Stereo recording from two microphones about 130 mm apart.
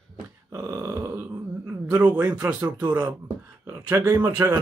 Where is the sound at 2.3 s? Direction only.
30° right (ahead or behind).